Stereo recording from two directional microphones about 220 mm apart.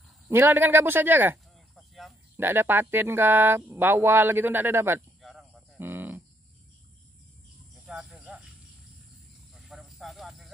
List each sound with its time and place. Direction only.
0.3 s speech: 10° right (ahead or behind)
5.2 s livestock: centre (ahead or behind)
7.8 s a sound: 5° right (ahead or behind)
9.7 s cricket: centre (ahead or behind)